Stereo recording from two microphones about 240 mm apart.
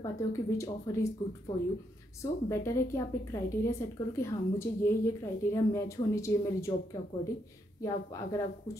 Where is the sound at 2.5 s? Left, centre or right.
Centre.